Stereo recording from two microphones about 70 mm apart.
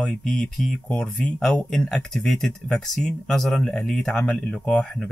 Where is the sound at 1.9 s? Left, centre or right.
Centre.